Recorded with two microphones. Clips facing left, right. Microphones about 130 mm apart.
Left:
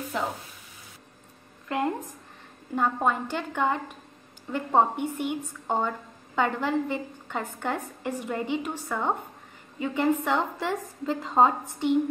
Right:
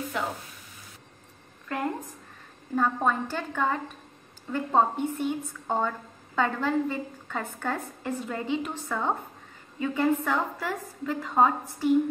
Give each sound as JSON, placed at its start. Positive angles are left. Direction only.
{"t": 0.2, "sound": "frying", "side_deg": 30}
{"t": 2.7, "sound": "a woman's voice", "side_deg": 15}